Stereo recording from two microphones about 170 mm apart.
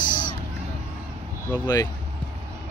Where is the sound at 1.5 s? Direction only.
15° left (ahead or behind).